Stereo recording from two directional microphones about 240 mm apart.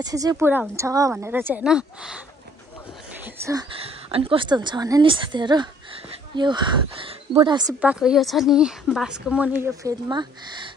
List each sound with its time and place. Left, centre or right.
0.0 s a woman's voice: centre
3.4 s speech: centre
7.8 s a woman's voice: centre